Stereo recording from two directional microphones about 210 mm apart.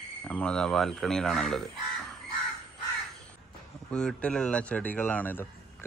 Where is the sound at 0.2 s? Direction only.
5° left (ahead or behind).